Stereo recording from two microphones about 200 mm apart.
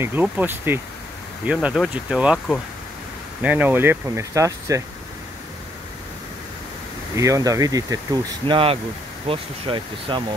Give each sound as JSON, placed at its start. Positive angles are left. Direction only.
{"t": 0.0, "sound": "speech", "side_deg": -10}
{"t": 3.4, "sound": "speech", "side_deg": -10}
{"t": 7.2, "sound": "speech", "side_deg": -15}